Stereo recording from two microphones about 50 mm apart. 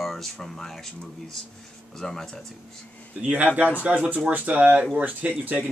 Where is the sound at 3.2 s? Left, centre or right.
Right.